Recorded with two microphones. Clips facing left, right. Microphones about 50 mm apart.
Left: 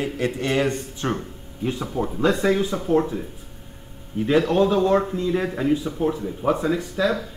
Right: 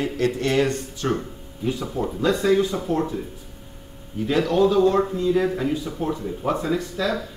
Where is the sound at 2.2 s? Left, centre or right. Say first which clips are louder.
Right 1 dB; left.